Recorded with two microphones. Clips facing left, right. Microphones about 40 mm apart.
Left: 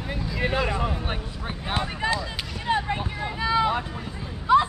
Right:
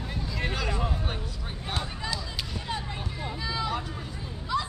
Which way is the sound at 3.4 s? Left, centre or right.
Left.